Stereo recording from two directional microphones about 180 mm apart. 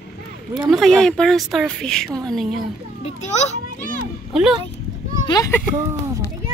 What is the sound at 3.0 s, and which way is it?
Speech, 40° left (ahead or behind).